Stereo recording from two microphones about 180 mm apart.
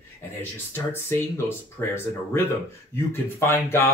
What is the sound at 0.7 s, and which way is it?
Speech, 15° left (ahead or behind).